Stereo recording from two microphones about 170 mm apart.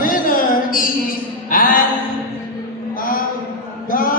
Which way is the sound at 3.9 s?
55° left (ahead or behind).